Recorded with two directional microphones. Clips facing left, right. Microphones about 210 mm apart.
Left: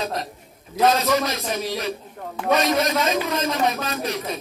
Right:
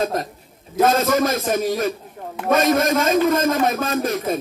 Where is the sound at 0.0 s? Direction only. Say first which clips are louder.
Right 5 dB; 50° right (ahead or behind).